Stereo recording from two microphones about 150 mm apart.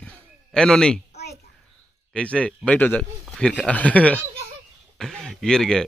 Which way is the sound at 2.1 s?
5° left (ahead or behind).